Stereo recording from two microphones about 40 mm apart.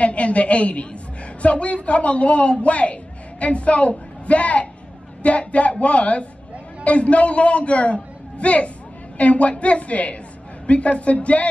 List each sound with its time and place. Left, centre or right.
0.0 s a man's voice: left